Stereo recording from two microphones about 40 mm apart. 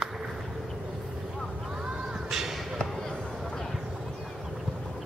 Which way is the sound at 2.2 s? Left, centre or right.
Centre.